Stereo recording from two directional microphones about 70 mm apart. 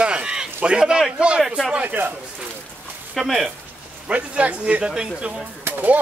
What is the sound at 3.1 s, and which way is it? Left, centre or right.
Speech, centre.